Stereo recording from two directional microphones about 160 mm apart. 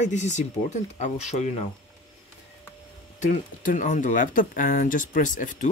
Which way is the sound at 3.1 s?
55° left (ahead or behind).